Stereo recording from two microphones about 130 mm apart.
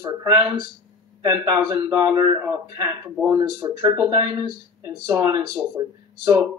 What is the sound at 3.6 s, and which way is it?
Speech, 30° right (ahead or behind).